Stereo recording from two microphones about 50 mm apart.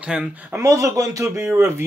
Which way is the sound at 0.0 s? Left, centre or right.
Centre.